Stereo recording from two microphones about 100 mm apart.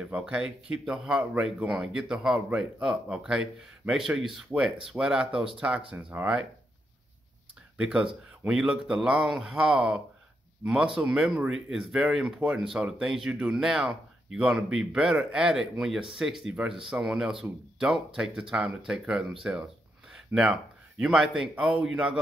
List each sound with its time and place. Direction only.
0.0 s speech: 10° right (ahead or behind)
7.7 s a man's voice: 5° right (ahead or behind)
19.4 s a man's voice: 20° right (ahead or behind)